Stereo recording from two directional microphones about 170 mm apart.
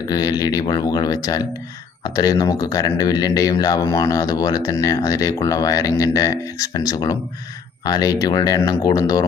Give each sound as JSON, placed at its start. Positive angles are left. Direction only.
{"t": 0.1, "sound": "speech", "side_deg": 25}